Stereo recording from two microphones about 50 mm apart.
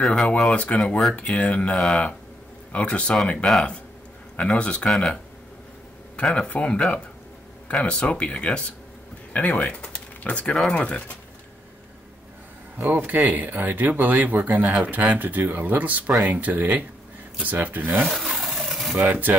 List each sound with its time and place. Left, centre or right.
0.0 s speech: centre
0.4 s speech: left
4.4 s speech: left
6.3 s speech: left
12.7 s speech: right
18.0 s a sound: centre
19.0 s speech: right